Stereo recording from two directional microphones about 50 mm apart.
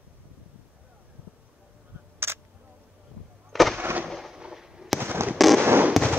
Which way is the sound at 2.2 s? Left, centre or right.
Right.